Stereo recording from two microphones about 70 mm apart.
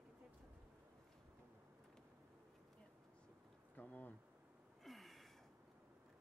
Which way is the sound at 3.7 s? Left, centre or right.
Left.